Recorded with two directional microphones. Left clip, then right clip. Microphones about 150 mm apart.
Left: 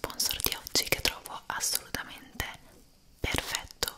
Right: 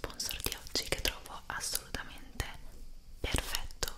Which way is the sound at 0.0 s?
30° left (ahead or behind).